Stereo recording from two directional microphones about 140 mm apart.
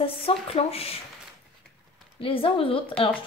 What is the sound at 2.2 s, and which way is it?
Speech, 40° left (ahead or behind).